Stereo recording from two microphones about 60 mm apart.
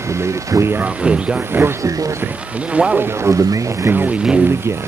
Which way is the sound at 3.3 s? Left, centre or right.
Right.